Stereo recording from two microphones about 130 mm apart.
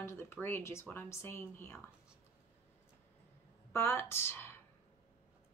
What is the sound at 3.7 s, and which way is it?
Speech, 20° left (ahead or behind).